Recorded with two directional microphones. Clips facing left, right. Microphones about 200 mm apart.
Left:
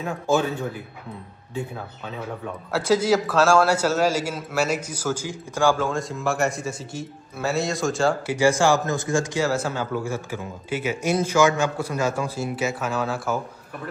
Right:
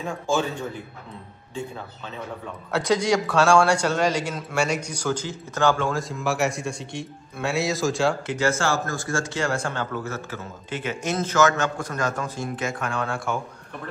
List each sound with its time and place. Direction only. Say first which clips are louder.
0.0 s speech: left 3 dB; 5° left (ahead or behind)
2.7 s a man's voice: left 2 dB; 5° left (ahead or behind)
8.4 s speech: left 8 dB; 15° left (ahead or behind)
9.4 s speech: left 3 dB; 5° left (ahead or behind)